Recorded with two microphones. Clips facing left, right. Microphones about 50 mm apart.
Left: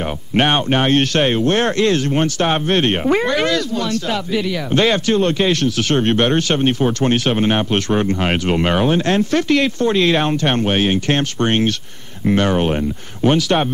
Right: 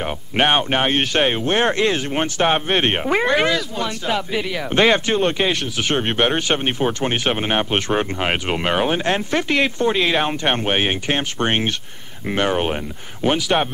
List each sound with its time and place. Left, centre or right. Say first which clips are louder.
0.0 s speech: left 2 dB; centre